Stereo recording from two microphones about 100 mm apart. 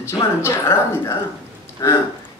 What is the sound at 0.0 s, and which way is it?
A man's voice, 25° left (ahead or behind).